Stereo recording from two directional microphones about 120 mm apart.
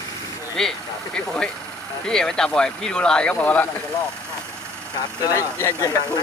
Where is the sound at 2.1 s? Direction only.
5° left (ahead or behind).